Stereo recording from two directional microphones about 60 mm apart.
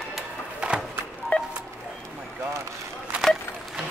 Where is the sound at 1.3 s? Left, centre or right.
Left.